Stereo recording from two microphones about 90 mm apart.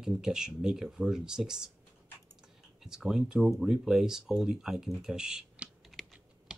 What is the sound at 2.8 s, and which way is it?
Speech, 5° right (ahead or behind).